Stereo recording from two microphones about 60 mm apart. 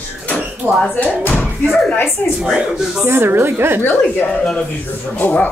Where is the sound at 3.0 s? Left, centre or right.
Right.